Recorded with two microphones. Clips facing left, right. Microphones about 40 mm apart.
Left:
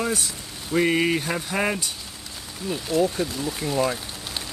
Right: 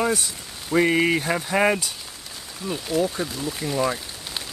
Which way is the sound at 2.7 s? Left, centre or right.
Centre.